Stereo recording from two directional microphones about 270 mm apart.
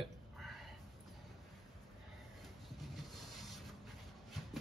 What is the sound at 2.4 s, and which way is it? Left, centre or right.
Rub, centre.